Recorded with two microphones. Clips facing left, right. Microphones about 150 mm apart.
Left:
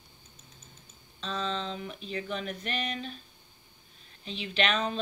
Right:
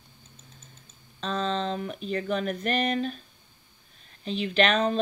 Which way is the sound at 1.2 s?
50° right (ahead or behind).